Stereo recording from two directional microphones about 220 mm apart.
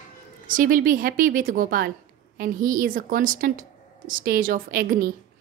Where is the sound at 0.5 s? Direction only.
40° right (ahead or behind).